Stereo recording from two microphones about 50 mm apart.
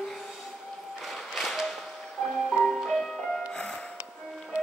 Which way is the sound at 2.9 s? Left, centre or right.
Centre.